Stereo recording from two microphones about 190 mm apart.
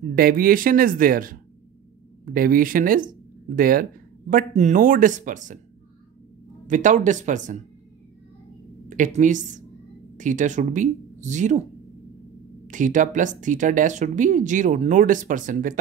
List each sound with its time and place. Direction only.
0.1 s speech: 50° right (ahead or behind)
6.7 s speech: 40° right (ahead or behind)
8.8 s a woman's voice: 40° right (ahead or behind)
12.6 s speech: 40° right (ahead or behind)